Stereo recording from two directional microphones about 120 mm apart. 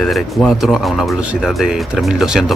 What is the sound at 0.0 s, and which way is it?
Speech, centre (ahead or behind).